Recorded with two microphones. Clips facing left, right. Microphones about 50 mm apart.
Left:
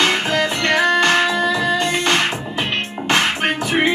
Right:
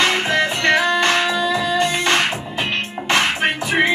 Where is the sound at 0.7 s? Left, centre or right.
Left.